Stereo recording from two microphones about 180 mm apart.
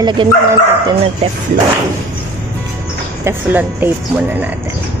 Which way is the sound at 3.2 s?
10° right (ahead or behind).